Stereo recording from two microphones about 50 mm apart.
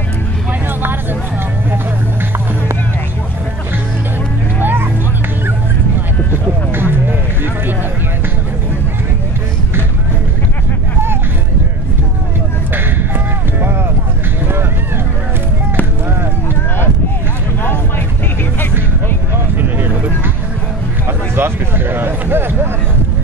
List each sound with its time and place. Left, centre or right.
6.7 s music: right
13.6 s vehicle: right
21.4 s a sound: right